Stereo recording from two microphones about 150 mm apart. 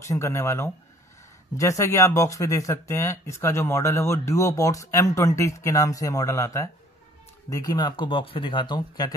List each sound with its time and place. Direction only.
0.0 s speech: 20° left (ahead or behind)